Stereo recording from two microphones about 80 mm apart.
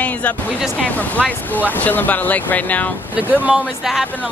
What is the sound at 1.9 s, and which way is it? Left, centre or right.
Speech, left.